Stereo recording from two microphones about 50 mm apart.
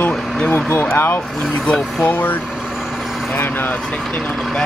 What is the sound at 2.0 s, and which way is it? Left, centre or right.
Speech, left.